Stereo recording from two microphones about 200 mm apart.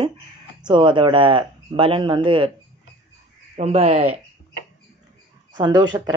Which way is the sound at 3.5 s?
30° right (ahead or behind).